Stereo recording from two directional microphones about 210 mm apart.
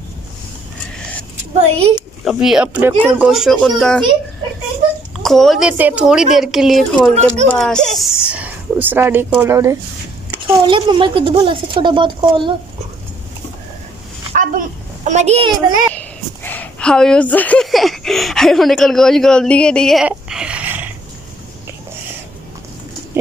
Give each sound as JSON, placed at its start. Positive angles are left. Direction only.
{"t": 1.7, "sound": "speech", "side_deg": -30}
{"t": 2.2, "sound": "a woman's voice", "side_deg": -5}
{"t": 5.2, "sound": "a woman's voice", "side_deg": 0}
{"t": 10.4, "sound": "speech", "side_deg": -25}
{"t": 14.3, "sound": "speech", "side_deg": -40}
{"t": 15.9, "sound": "a woman's voice", "side_deg": 5}